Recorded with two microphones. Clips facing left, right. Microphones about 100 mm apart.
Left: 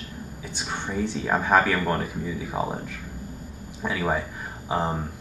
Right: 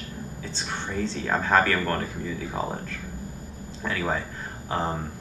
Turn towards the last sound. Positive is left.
turn(degrees=15)  # may be behind; listen again after turning